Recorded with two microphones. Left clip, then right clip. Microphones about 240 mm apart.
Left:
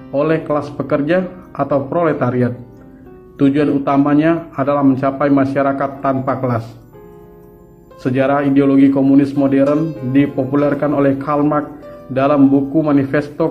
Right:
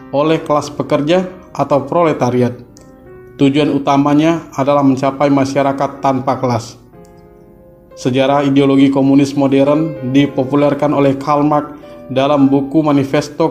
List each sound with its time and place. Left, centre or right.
0.1 s a man's voice: right
8.0 s a man's voice: right